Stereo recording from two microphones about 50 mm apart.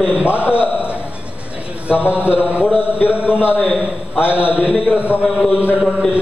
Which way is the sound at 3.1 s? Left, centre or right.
Right.